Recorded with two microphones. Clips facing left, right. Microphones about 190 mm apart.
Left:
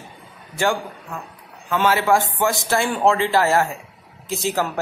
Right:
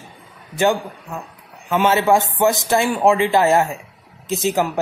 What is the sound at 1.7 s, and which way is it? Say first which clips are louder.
A man's voice: right 2 dB; 20° right (ahead or behind).